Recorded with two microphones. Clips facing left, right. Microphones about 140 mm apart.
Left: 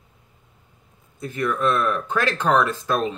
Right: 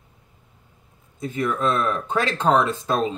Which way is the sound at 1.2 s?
20° right (ahead or behind).